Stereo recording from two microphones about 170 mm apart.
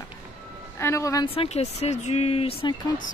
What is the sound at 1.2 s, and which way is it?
Speech, 35° left (ahead or behind).